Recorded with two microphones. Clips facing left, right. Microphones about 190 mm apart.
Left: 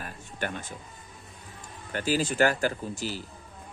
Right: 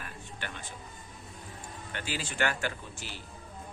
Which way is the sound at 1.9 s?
40° left (ahead or behind).